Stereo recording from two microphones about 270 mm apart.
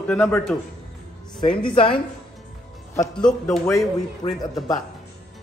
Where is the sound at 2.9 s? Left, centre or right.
Centre.